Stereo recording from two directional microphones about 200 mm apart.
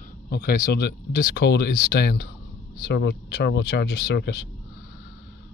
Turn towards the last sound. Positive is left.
turn(degrees=55)  # may be behind; listen again after turning